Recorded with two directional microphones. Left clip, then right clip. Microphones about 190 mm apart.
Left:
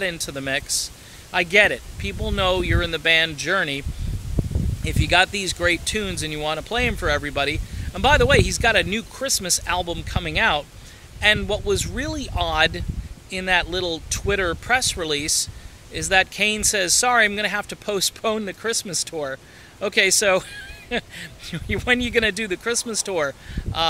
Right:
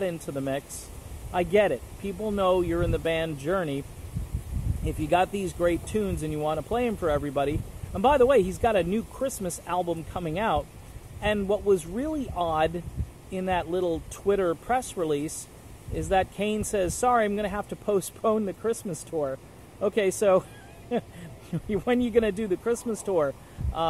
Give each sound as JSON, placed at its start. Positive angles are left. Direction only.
{"t": 0.3, "sound": "speech", "side_deg": 10}
{"t": 4.8, "sound": "speech", "side_deg": 10}
{"t": 22.8, "sound": "speech", "side_deg": 35}
{"t": 23.0, "sound": "speech", "side_deg": 15}